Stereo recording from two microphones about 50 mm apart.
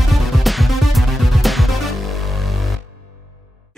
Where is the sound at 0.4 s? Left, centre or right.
Centre.